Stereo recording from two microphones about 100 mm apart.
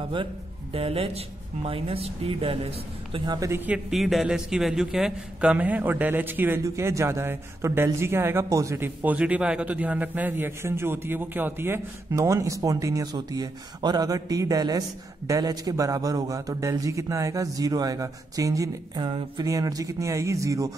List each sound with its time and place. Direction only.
0.7 s speech: 70° right (ahead or behind)
3.3 s a man's voice: 35° right (ahead or behind)
3.5 s speech: 15° right (ahead or behind)
3.9 s speech: centre (ahead or behind); by 6.6 s 20° right (ahead or behind)
6.6 s a man's voice: 30° right (ahead or behind)
18.9 s a sound: 60° right (ahead or behind)
19.3 s a man's voice: 40° right (ahead or behind)